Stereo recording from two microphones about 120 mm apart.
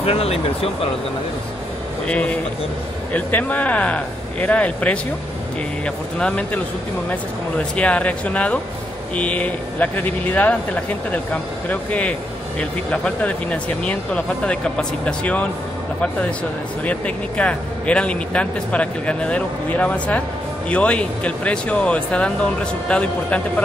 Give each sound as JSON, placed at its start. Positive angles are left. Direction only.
{"t": 0.0, "sound": "speech", "side_deg": 55}
{"t": 2.0, "sound": "speech", "side_deg": 10}